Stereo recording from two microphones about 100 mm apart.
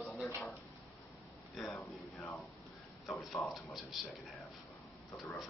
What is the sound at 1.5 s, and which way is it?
Speech, 5° left (ahead or behind).